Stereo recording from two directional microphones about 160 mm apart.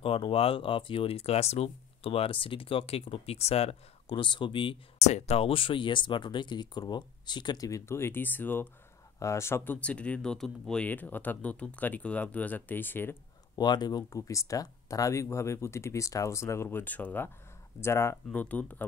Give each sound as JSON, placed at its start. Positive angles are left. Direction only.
{"t": 0.0, "sound": "speech", "side_deg": 35}
{"t": 13.6, "sound": "speech", "side_deg": 25}